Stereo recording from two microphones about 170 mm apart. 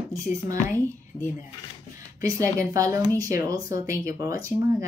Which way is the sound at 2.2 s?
20° right (ahead or behind).